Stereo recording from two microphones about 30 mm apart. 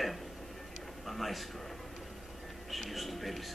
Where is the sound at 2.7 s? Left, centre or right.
Centre.